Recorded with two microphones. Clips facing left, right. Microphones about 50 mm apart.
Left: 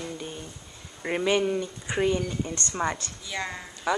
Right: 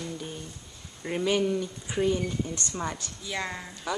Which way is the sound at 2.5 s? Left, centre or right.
Left.